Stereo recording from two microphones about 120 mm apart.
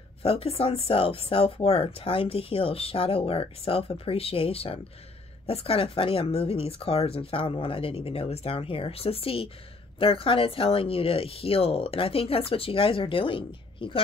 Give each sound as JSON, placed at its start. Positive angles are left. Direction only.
{"t": 0.2, "sound": "speech", "side_deg": 55}